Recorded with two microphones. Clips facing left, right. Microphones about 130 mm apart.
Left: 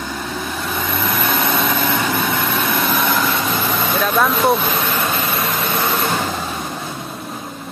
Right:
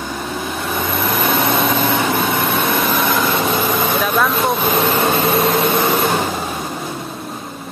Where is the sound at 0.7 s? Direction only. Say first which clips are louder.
Right 2 dB; 25° right (ahead or behind).